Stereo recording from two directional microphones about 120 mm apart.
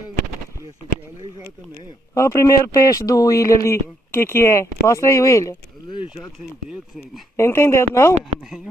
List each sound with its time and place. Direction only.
2.1 s speech: 25° left (ahead or behind)
7.3 s speech: 20° left (ahead or behind)